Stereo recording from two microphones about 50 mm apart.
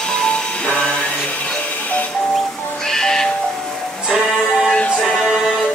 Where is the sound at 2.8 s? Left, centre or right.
Centre.